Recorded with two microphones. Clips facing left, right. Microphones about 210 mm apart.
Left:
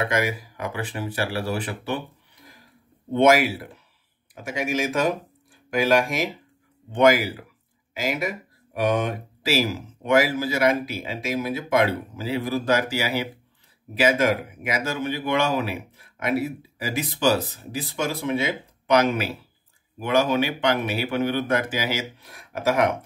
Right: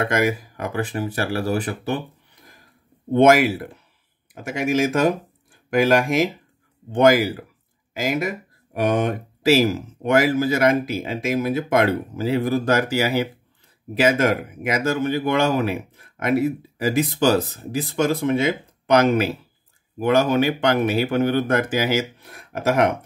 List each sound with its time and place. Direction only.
0.0 s speech: 45° right (ahead or behind)
3.1 s speech: 50° right (ahead or behind)
6.9 s speech: 45° right (ahead or behind)